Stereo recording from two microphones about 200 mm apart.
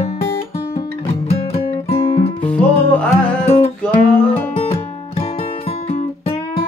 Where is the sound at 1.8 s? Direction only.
30° left (ahead or behind).